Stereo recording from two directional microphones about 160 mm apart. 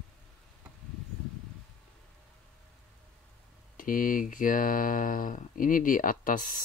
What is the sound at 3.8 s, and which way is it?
Speech, 60° left (ahead or behind).